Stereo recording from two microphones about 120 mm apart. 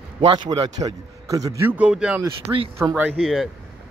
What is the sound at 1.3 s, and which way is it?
Speech, 30° right (ahead or behind).